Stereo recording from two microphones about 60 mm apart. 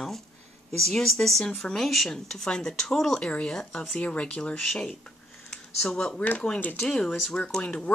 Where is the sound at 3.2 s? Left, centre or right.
Centre.